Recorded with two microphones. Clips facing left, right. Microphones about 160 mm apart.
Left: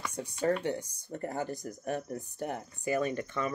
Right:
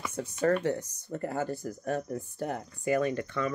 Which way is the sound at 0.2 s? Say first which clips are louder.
Right 3 dB; 10° left (ahead or behind).